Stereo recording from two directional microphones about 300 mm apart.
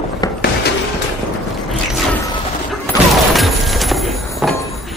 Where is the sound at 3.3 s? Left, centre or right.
Centre.